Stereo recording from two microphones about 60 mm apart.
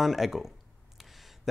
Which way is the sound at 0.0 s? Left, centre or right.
Centre.